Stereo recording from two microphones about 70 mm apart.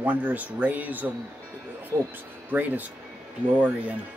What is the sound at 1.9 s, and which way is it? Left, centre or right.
Speech, right.